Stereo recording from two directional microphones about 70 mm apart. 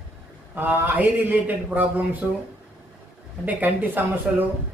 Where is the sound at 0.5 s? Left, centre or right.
Right.